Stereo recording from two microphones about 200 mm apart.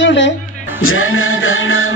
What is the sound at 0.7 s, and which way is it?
Music, 90° left.